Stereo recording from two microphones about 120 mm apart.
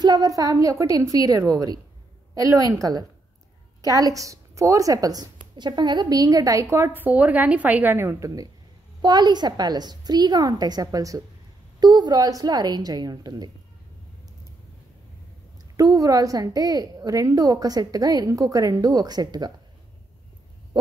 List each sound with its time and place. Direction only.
0.0 s a woman's voice: 30° right (ahead or behind)
9.0 s a woman's voice: 35° right (ahead or behind)
15.7 s a woman's voice: 30° right (ahead or behind)